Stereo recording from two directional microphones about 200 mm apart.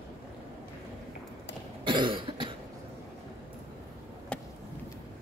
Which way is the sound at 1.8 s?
25° right (ahead or behind).